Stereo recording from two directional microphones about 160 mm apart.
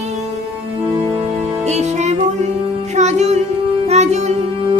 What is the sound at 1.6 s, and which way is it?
Music, 45° right (ahead or behind).